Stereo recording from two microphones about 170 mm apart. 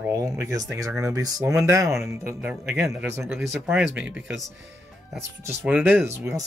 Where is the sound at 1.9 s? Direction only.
Centre (ahead or behind).